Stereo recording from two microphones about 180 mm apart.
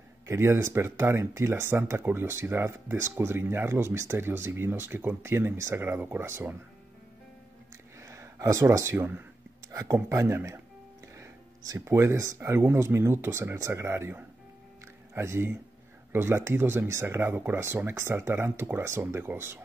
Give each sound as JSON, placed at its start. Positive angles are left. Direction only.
{"t": 0.3, "sound": "speech", "side_deg": -15}
{"t": 8.0, "sound": "speech", "side_deg": -15}